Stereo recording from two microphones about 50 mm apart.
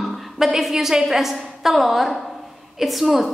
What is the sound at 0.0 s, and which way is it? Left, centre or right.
A woman's voice, centre.